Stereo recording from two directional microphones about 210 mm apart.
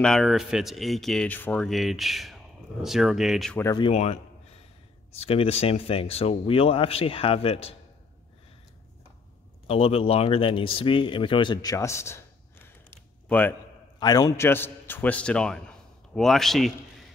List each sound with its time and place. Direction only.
0.0 s speech: centre (ahead or behind)
3.6 s speech: 20° left (ahead or behind)
3.9 s a man's voice: 30° left (ahead or behind)
5.2 s speech: 30° left (ahead or behind)
9.7 s speech: 25° left (ahead or behind)
13.3 s a man's voice: 10° left (ahead or behind)
13.9 s a man's voice: 20° left (ahead or behind); by 16.7 s centre (ahead or behind)